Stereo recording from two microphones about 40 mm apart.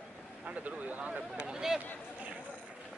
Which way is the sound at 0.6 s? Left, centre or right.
Right.